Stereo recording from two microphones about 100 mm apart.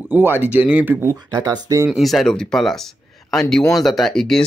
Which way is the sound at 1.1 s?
45° right (ahead or behind).